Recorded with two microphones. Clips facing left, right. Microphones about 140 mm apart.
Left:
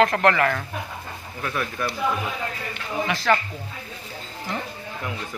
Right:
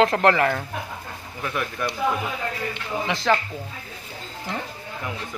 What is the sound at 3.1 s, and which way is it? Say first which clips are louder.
Speech: even; 25° right (ahead or behind).